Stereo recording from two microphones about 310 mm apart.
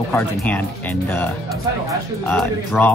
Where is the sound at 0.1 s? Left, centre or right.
Centre.